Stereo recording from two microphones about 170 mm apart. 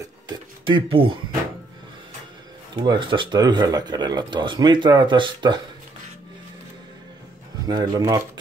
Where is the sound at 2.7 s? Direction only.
25° right (ahead or behind).